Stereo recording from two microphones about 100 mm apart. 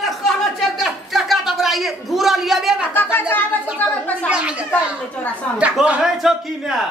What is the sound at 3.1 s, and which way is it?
Speech, 20° left (ahead or behind).